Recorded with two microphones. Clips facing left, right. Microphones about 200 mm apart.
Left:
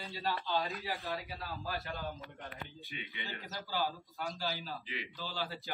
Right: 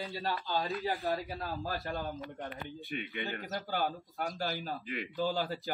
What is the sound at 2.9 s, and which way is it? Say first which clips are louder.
A man's voice: right 7 dB; 55° right (ahead or behind).